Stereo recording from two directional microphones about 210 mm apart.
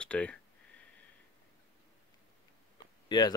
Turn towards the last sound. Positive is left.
turn(degrees=20)  # may be behind; listen again after turning